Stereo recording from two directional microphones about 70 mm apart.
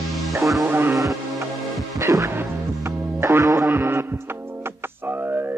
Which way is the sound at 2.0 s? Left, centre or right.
Right.